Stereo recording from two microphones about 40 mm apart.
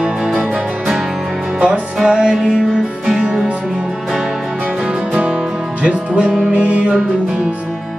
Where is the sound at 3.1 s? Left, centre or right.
Right.